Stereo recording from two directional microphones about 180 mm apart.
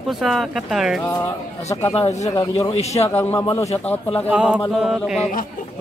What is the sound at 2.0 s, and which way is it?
Speech, 35° left (ahead or behind).